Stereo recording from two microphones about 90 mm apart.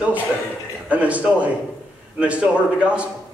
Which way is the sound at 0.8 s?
15° right (ahead or behind).